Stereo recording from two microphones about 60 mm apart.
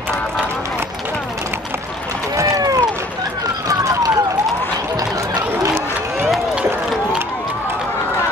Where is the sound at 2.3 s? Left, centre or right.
Right.